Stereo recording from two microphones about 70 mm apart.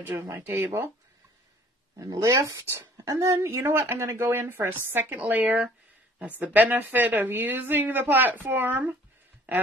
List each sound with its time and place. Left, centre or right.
0.3 s a woman's voice: right
2.0 s speech: right
2.2 s a woman's voice: right
3.0 s a woman's voice: right
5.1 s a woman's voice: right
9.5 s quack: right